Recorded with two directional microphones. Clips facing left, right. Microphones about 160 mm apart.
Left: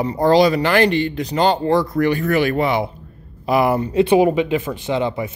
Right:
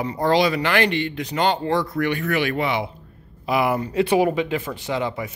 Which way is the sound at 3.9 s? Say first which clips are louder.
Left 5 dB; 20° left (ahead or behind).